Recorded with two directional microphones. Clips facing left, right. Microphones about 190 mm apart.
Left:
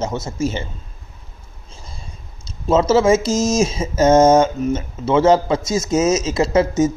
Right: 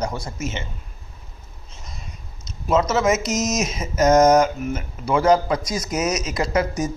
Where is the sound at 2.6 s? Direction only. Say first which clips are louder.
Left 5 dB; 25° left (ahead or behind).